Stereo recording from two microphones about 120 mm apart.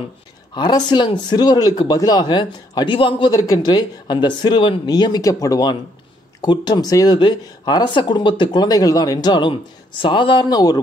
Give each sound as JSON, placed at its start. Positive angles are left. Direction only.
{"t": 0.6, "sound": "speech", "side_deg": 35}
{"t": 3.3, "sound": "speech", "side_deg": 30}